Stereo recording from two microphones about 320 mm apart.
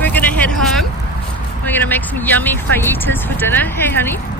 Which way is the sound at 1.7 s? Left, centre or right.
Centre.